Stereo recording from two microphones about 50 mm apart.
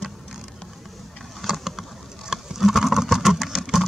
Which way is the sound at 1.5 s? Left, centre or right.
Centre.